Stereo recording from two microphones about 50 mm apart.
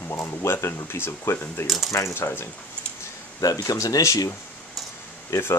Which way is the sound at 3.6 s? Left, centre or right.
Left.